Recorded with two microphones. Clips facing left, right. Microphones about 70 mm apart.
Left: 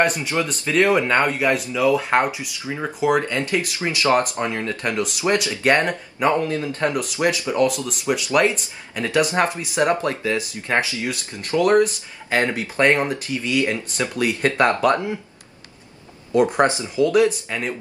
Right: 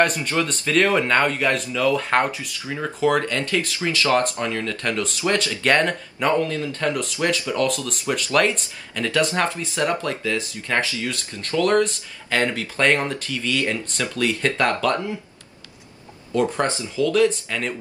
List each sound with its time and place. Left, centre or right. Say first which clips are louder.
0.0 s speech: even; centre; by 15.1 s left
16.3 s speech: left 4 dB; centre